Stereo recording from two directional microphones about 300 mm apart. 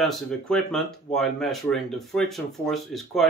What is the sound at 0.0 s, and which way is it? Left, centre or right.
Speech, centre.